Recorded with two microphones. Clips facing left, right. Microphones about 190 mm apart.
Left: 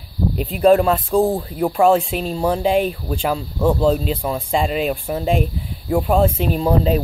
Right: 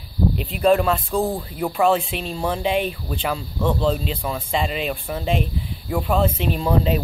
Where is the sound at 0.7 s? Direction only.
40° left (ahead or behind).